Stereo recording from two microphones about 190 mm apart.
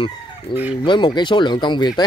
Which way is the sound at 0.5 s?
25° left (ahead or behind).